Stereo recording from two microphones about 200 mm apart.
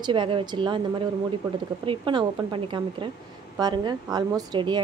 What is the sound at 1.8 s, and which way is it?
A woman's voice, 25° right (ahead or behind).